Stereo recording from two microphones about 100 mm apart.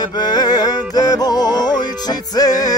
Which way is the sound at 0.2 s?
45° left (ahead or behind).